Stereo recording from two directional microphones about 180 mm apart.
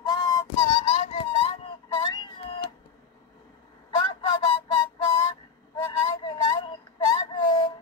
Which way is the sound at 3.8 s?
25° left (ahead or behind).